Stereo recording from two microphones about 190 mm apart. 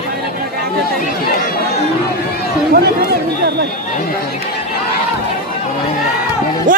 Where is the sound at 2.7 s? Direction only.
55° right (ahead or behind).